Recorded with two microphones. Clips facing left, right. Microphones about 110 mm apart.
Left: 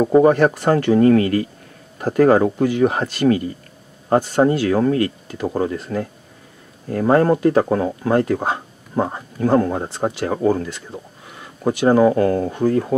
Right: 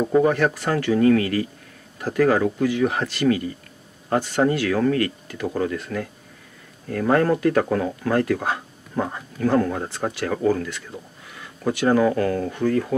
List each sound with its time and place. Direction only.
0.2 s speech: 35° left (ahead or behind)